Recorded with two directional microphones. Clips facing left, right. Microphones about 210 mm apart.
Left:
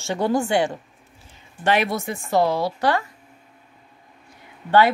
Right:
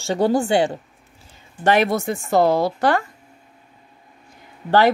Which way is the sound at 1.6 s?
45° right (ahead or behind).